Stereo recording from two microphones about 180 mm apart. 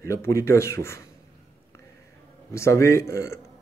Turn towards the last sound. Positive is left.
turn(degrees=15)  # may be behind; listen again after turning